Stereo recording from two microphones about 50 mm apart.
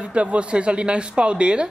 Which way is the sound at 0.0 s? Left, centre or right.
Right.